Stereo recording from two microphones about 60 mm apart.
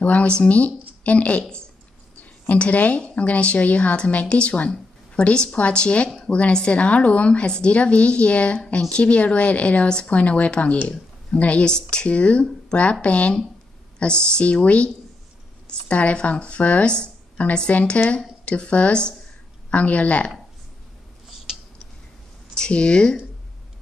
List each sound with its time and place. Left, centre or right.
0.0 s a woman's voice: left
21.5 s a sound: centre
22.6 s speech: centre